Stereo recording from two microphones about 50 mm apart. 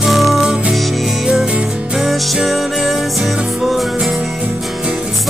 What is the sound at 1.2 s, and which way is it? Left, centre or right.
Music, centre.